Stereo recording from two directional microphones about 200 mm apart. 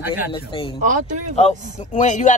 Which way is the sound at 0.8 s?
40° right (ahead or behind).